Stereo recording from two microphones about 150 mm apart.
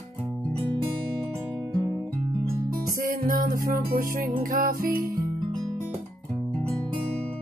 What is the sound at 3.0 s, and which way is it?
Music, 70° right (ahead or behind).